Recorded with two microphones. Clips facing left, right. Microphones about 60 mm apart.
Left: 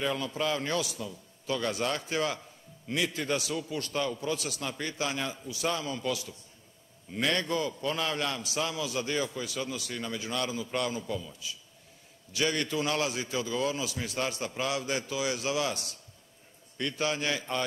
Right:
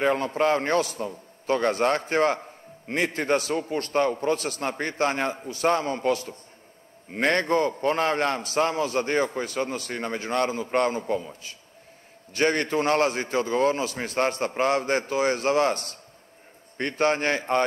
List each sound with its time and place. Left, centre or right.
0.0 s a man's voice: right